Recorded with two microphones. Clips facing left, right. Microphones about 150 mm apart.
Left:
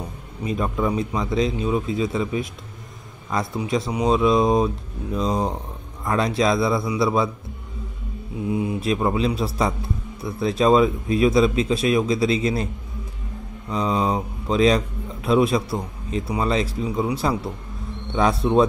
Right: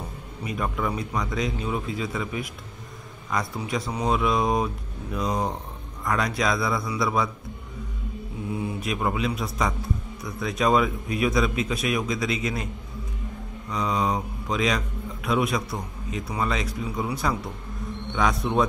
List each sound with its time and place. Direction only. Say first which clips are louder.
0.5 s a man's voice: left 5 dB; 25° left (ahead or behind)
8.5 s a man's voice: left 7 dB; 20° left (ahead or behind)
13.7 s a man's voice: left 3 dB; 30° left (ahead or behind)